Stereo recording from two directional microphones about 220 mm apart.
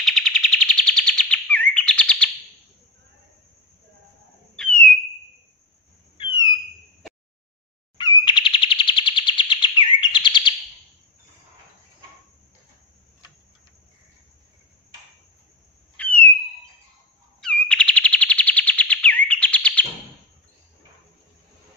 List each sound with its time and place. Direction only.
0.0 s bird: centre (ahead or behind)
4.6 s a sound: 5° left (ahead or behind)
6.1 s a sound: 20° left (ahead or behind)
8.0 s chirp: 20° left (ahead or behind)
16.0 s owl: 5° left (ahead or behind)
17.4 s chirp: 5° left (ahead or behind)